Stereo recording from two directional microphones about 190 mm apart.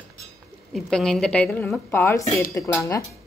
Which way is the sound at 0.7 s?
Centre (ahead or behind).